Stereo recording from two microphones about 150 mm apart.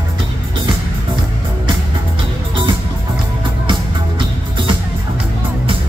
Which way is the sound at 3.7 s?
35° right (ahead or behind).